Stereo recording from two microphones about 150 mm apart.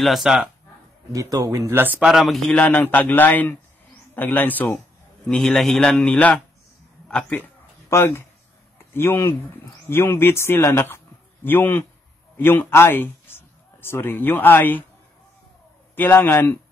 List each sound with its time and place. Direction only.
0.0 s a man's voice: centre (ahead or behind)
1.1 s a man's voice: 25° right (ahead or behind); by 6.4 s 10° left (ahead or behind)
7.1 s a sound: 5° left (ahead or behind)
8.9 s a man's voice: 15° left (ahead or behind)
16.0 s speech: 15° left (ahead or behind)